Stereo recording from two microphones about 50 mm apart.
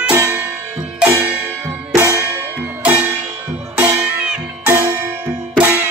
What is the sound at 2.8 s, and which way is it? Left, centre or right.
Music, right.